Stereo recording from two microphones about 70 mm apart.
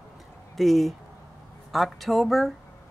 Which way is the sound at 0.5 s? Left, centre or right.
Centre.